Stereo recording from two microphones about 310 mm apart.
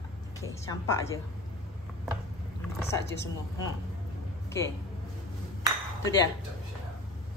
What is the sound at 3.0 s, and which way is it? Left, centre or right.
Speech, left.